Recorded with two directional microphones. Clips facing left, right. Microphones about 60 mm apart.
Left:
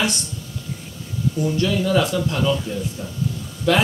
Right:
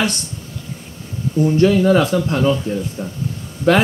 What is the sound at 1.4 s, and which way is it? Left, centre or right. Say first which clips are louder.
Speech: right 8 dB; right.